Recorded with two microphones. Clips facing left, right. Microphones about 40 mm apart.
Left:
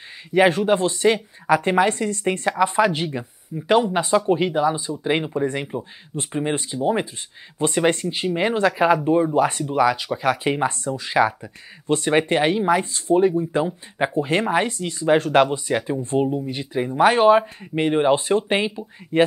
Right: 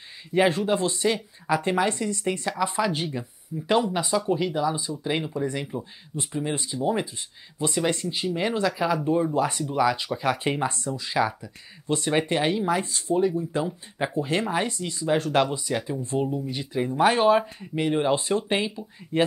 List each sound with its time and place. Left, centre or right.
0.3 s speech: left
6.1 s speech: left
7.5 s speech: left
10.1 s speech: centre
10.7 s speech: left
13.7 s speech: left
17.0 s speech: left